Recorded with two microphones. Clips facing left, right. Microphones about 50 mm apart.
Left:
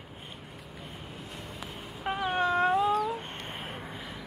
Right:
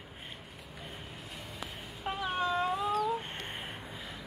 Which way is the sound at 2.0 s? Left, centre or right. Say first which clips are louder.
Left 4 dB; left.